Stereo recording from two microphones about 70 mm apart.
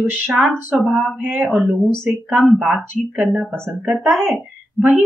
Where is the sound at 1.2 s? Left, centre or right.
Centre.